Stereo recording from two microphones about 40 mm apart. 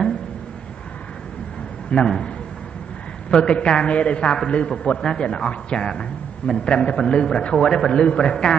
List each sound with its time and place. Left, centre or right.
1.9 s a man's voice: left
5.0 s a man's voice: centre